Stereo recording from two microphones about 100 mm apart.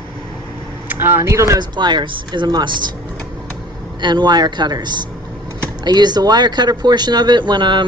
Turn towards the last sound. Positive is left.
turn(degrees=-50)  # may be behind; listen again after turning